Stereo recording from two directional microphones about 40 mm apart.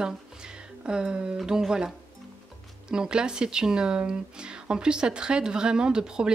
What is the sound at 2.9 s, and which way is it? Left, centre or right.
Speech, right.